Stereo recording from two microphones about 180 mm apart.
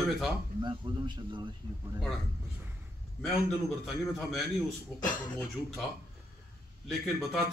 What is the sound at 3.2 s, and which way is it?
Speech, centre (ahead or behind).